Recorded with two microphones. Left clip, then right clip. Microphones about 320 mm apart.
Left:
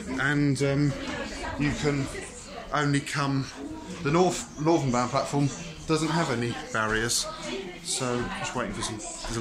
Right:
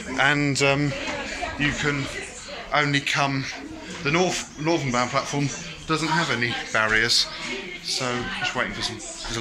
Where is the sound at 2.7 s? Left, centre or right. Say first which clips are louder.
Right 6 dB; centre.